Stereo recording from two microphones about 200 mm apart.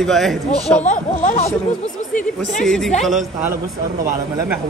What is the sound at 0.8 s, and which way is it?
Speech, 35° left (ahead or behind).